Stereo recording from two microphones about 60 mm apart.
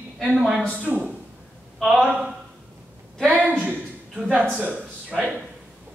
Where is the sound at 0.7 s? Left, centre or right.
Right.